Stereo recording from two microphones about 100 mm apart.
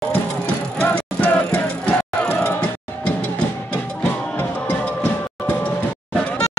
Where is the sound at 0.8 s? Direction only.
15° left (ahead or behind).